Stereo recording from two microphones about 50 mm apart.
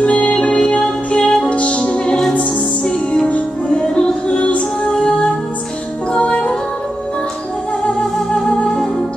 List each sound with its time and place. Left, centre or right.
0.0 s music: left
8.5 s music: centre